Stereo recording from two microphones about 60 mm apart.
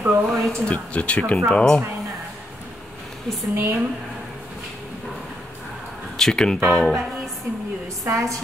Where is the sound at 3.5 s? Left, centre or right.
Right.